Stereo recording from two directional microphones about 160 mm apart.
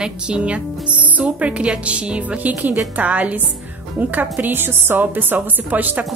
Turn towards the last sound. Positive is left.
turn(degrees=-10)  # may be behind; listen again after turning